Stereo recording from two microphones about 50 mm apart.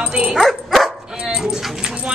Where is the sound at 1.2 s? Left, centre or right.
Centre.